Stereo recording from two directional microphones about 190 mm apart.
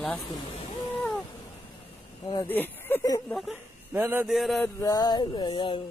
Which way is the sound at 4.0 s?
10° right (ahead or behind).